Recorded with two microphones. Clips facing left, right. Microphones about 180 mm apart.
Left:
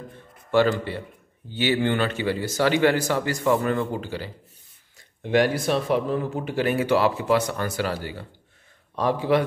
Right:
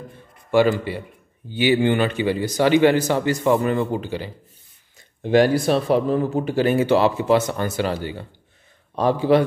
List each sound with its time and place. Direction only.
0.5 s a man's voice: 15° right (ahead or behind)
4.9 s a man's voice: 35° right (ahead or behind)